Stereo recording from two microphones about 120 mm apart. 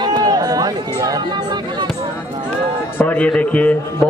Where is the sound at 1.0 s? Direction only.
35° right (ahead or behind).